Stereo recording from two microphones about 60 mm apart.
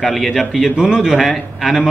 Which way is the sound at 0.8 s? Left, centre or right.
Centre.